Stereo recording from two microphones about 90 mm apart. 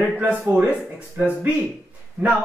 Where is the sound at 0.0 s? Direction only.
15° right (ahead or behind).